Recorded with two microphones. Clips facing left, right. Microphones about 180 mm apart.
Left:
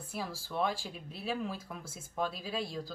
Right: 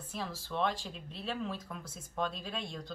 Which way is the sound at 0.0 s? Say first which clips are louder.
Left 1 dB; 10° left (ahead or behind).